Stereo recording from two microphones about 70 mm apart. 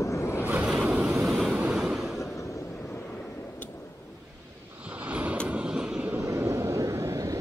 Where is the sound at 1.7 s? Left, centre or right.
Centre.